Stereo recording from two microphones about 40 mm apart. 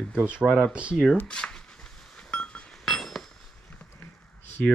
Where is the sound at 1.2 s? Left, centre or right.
Centre.